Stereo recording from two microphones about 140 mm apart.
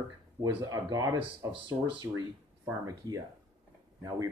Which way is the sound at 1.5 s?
35° right (ahead or behind).